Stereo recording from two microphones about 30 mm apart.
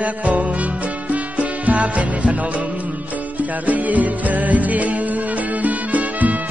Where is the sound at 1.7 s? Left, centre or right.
Right.